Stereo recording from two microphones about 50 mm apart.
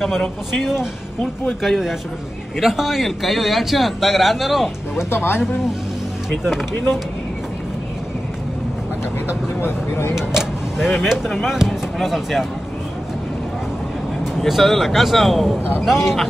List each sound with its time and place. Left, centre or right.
0.5 s speech: centre
5.1 s speech: left
9.6 s speech: left
10.3 s a sound: centre
11.2 s speech: centre
14.4 s speech: centre